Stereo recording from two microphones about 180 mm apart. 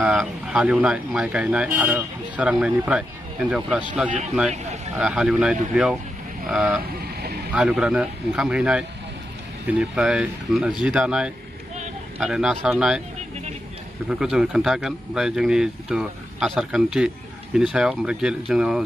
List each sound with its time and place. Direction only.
0.0 s speech: 5° right (ahead or behind)
4.9 s speech: 5° right (ahead or behind)
7.0 s vehicle: 65° right (ahead or behind)
7.5 s speech: 5° right (ahead or behind)
14.0 s speech: 5° right (ahead or behind)